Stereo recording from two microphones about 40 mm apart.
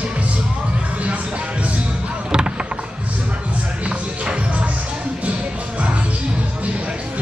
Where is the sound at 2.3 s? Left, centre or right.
Right.